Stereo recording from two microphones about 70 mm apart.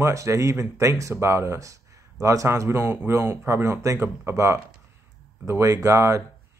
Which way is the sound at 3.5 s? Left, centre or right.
Right.